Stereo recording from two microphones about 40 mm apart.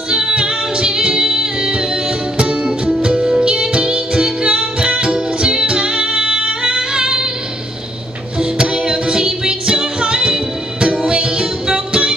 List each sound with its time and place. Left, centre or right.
0.1 s music: right
8.4 s music: right